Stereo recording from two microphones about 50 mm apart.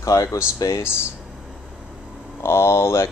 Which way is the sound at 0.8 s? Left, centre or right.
Left.